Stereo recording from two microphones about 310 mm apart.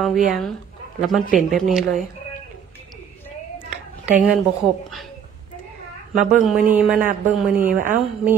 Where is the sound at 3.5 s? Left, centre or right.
Centre.